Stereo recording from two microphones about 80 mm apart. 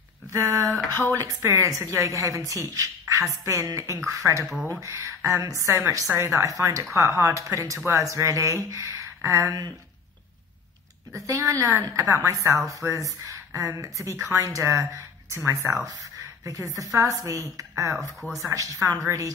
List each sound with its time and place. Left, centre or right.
0.3 s speech: right
11.1 s a woman's voice: right
18.2 s speech: centre
18.5 s speech: right